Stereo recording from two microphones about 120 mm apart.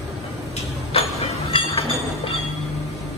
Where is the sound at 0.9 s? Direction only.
50° left (ahead or behind).